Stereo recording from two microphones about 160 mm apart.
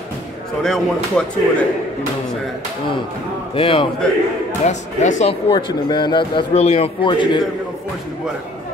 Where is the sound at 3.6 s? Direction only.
35° left (ahead or behind).